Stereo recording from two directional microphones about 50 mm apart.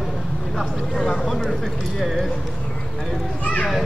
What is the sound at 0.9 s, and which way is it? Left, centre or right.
Speech, centre.